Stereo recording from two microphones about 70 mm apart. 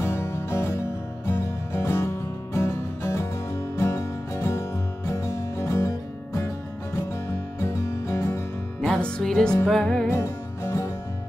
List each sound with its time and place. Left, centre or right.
0.0 s music: left
7.6 s music: left
9.0 s music: centre
10.1 s music: left